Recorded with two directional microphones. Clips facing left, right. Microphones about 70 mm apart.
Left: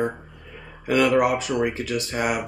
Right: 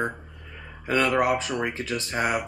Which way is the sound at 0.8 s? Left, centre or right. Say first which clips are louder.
Left 3 dB; right.